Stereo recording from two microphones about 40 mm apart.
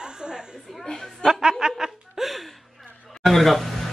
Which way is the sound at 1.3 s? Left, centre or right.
Centre.